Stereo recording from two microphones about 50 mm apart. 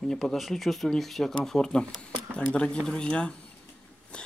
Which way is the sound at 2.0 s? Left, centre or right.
Left.